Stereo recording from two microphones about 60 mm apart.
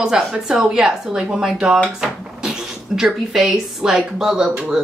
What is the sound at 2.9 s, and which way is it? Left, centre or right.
Speech, centre.